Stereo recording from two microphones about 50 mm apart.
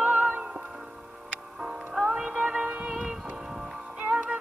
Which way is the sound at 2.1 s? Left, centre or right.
Centre.